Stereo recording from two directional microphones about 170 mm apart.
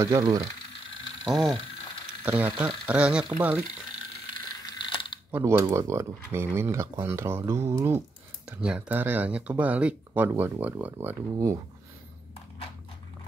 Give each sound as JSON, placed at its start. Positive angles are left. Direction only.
{"t": 0.0, "sound": "speech", "side_deg": -20}
{"t": 1.2, "sound": "speech", "side_deg": 0}
{"t": 4.7, "sound": "mechanisms", "side_deg": 30}
{"t": 5.3, "sound": "speech", "side_deg": -15}